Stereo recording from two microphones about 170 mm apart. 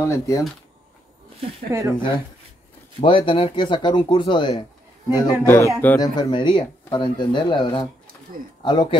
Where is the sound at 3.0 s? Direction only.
30° left (ahead or behind).